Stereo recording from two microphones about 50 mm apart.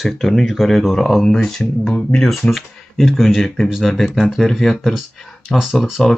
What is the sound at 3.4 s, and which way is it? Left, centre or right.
Speech, centre.